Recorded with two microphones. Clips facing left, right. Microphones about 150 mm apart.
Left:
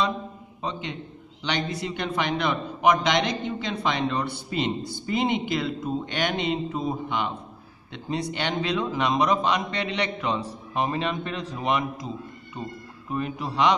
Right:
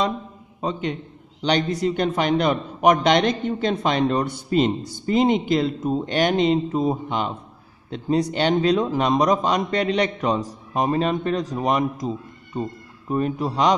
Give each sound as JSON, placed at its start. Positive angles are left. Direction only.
{"t": 0.6, "sound": "a man's voice", "side_deg": -45}
{"t": 13.1, "sound": "a man's voice", "side_deg": -35}